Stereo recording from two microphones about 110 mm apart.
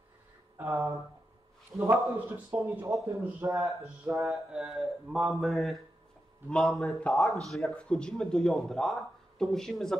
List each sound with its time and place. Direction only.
0.6 s speech: 25° right (ahead or behind)
1.8 s a man's voice: 15° right (ahead or behind)
4.0 s speech: 5° right (ahead or behind)